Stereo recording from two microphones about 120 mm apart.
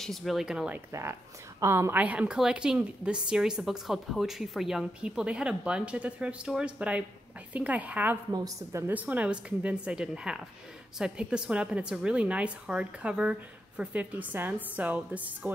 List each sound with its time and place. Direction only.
0.0 s speech: centre (ahead or behind)
1.6 s a woman's voice: 20° right (ahead or behind)
8.3 s a woman's voice: 25° right (ahead or behind)
8.9 s a woman's voice: 15° right (ahead or behind)